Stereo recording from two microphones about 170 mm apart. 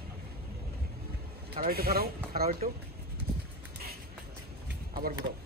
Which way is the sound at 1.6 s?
60° right (ahead or behind).